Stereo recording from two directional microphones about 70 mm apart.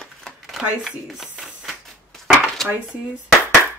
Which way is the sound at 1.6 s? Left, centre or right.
Centre.